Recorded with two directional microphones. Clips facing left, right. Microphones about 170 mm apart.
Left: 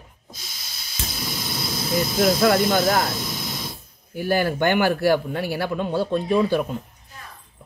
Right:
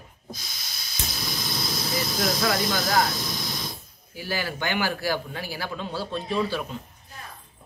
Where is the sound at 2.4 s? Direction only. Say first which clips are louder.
Left 7 dB; 55° left (ahead or behind).